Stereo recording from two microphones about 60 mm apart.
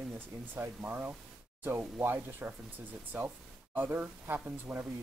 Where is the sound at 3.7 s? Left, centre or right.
Right.